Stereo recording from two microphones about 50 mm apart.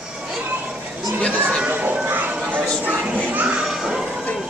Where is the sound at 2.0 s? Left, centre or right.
Right.